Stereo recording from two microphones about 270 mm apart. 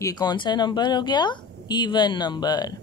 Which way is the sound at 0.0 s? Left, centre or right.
Centre.